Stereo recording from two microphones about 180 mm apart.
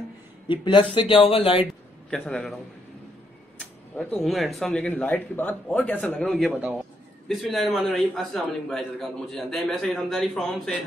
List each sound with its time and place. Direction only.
0.5 s speech: 25° left (ahead or behind)
2.0 s a man's voice: 5° left (ahead or behind)
3.9 s a man's voice: 10° left (ahead or behind)